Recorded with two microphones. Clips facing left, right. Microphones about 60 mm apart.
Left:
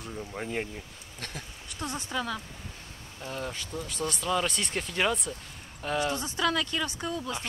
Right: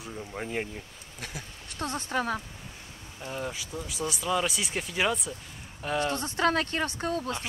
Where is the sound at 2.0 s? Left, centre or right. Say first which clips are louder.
Right 4 dB; right.